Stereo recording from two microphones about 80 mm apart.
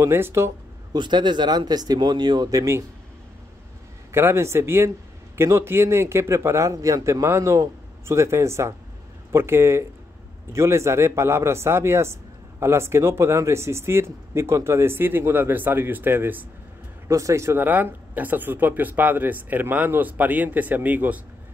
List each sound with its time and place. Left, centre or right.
0.0 s speech: right
0.9 s speech: right
4.1 s speech: right
17.1 s speech: right
17.6 s speech: right